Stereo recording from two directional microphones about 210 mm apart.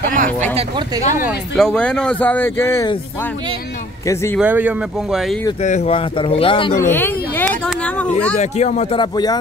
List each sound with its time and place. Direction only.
0.6 s speech: 20° right (ahead or behind)
1.6 s speech: 5° left (ahead or behind)
4.0 s speech: 15° left (ahead or behind)
4.4 s speech: 10° right (ahead or behind)
5.6 s speech: 30° left (ahead or behind)
6.8 s a sound: 10° left (ahead or behind)
8.4 s speech: 30° left (ahead or behind)